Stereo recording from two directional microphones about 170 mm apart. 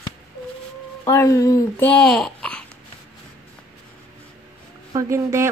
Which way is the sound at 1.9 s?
5° left (ahead or behind).